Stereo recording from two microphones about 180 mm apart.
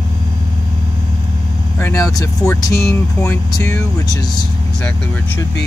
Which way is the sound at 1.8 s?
15° left (ahead or behind).